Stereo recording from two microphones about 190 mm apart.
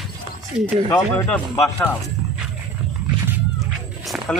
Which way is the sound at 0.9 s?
15° left (ahead or behind).